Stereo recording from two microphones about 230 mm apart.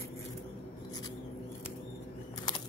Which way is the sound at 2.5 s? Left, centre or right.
Centre.